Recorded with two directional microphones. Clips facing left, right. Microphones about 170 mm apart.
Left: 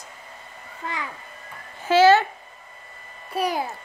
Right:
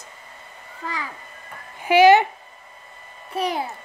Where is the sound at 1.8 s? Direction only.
15° right (ahead or behind).